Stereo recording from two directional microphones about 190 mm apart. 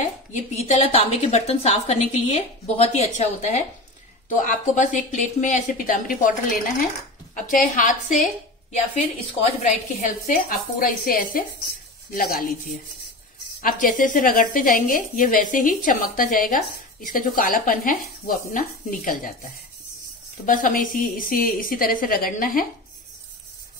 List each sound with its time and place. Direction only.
0.3 s a woman's voice: 35° left (ahead or behind)
7.3 s speech: 45° left (ahead or behind)
9.2 s speech: 40° left (ahead or behind)